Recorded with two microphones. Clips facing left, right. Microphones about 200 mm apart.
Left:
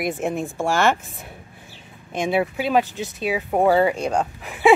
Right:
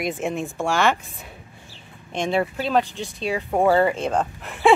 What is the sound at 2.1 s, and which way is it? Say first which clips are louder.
Speech: left 1 dB; 5° left (ahead or behind).